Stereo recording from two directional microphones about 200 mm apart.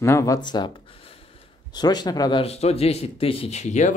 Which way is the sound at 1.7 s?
20° left (ahead or behind).